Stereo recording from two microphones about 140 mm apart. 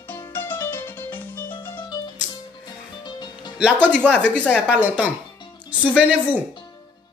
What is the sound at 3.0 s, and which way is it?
Music, 35° left (ahead or behind).